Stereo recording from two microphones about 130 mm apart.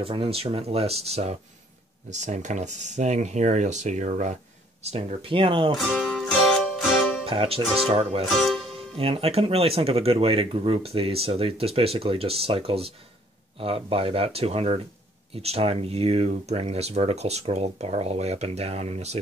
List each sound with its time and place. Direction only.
0.0 s speech: 45° right (ahead or behind)
2.0 s speech: 65° right (ahead or behind)
4.8 s speech: 50° right (ahead or behind)
5.9 s music: 5° left (ahead or behind)
7.2 s speech: 45° right (ahead or behind)
8.3 s music: centre (ahead or behind)
8.9 s speech: 50° right (ahead or behind)